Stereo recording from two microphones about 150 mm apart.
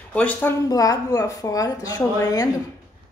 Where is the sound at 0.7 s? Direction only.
25° left (ahead or behind).